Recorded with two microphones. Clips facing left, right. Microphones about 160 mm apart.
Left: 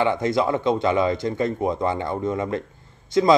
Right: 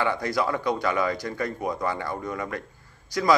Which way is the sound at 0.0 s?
20° left (ahead or behind).